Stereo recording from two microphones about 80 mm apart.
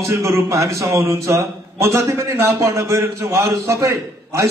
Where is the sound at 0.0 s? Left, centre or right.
Right.